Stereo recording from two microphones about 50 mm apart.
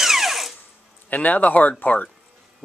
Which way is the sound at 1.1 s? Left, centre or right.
Left.